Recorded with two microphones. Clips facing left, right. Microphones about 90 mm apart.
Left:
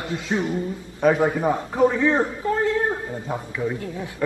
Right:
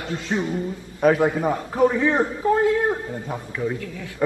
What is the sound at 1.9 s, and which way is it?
Speech, 15° right (ahead or behind).